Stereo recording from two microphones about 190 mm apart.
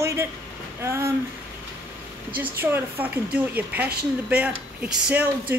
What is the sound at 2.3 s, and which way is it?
Speech, 10° right (ahead or behind).